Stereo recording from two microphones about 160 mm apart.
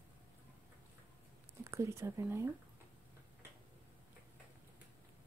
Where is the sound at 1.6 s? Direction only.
15° right (ahead or behind).